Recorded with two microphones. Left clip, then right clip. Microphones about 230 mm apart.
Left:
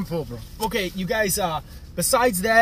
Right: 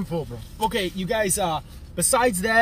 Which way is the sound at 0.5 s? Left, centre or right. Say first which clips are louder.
Right 1 dB; centre.